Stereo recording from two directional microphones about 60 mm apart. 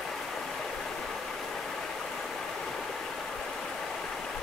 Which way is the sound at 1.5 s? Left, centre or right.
Centre.